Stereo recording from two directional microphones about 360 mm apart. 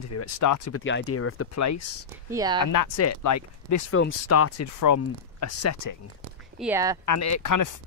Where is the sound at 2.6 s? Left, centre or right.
Left.